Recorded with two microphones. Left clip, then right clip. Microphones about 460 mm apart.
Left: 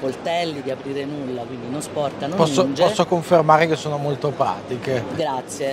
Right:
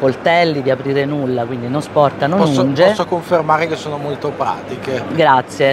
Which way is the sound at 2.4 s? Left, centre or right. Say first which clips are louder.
Right 3 dB; left.